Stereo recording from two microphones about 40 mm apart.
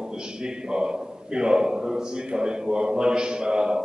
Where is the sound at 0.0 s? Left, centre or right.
Centre.